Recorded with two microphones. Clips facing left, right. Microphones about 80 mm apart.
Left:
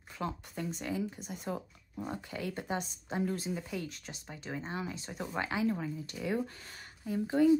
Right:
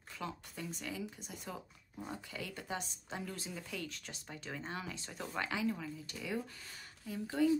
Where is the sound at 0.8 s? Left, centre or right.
Left.